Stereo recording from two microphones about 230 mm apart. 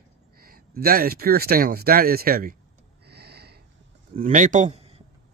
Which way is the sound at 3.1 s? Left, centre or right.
Right.